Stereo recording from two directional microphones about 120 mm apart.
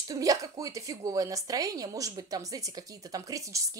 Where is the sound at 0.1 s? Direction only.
30° right (ahead or behind).